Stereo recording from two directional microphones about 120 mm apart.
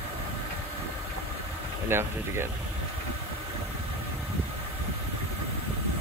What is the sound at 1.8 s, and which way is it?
Speech, 20° right (ahead or behind).